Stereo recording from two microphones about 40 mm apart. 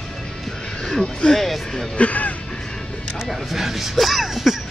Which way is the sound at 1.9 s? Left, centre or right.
Left.